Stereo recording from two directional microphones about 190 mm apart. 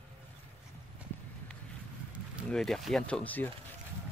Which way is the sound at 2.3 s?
Centre (ahead or behind).